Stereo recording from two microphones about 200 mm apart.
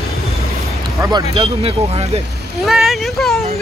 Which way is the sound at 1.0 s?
20° right (ahead or behind).